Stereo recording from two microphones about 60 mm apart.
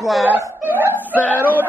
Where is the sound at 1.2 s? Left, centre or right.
Left.